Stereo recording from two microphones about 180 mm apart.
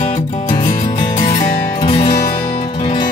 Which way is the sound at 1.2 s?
40° left (ahead or behind).